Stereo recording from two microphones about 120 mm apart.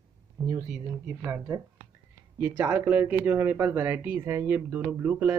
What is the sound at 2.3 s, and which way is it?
Speech, 15° right (ahead or behind).